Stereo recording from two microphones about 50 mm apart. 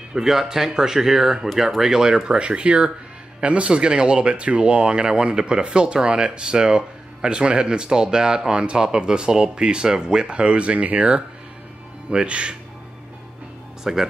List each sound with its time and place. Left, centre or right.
0.1 s speech: centre
13.9 s speech: centre